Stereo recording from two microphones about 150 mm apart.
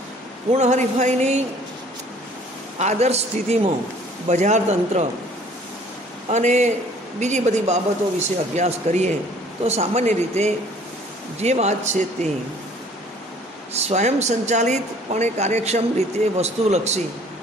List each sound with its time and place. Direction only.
0.5 s speech: 50° right (ahead or behind)
2.8 s speech: 50° right (ahead or behind)
6.2 s speech: 50° right (ahead or behind)
13.7 s speech: 50° right (ahead or behind)